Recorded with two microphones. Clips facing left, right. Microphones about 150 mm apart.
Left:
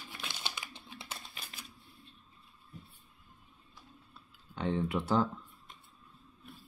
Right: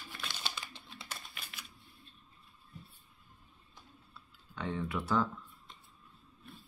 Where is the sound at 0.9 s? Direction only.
30° left (ahead or behind).